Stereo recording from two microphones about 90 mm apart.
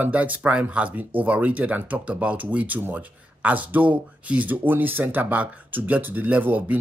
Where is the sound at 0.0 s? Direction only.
15° right (ahead or behind).